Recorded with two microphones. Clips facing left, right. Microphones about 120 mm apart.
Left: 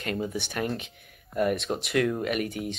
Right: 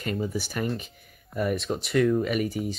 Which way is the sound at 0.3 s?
Centre (ahead or behind).